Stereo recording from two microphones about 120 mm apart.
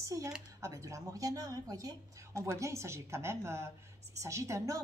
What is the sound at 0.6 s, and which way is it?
A woman's voice, 25° right (ahead or behind).